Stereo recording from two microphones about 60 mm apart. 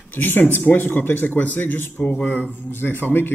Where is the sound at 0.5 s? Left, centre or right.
Left.